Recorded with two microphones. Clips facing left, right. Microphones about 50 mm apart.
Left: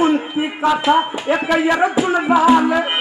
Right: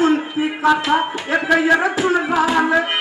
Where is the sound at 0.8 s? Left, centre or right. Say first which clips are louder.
Left 3 dB; centre.